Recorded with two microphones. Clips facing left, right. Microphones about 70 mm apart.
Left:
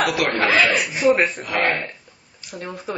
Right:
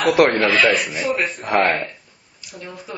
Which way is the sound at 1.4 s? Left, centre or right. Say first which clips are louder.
Right 4 dB; right.